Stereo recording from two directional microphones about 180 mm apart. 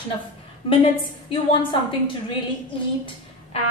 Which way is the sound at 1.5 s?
25° left (ahead or behind).